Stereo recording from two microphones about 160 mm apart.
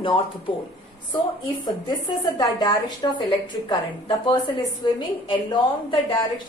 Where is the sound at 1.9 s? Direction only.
30° left (ahead or behind).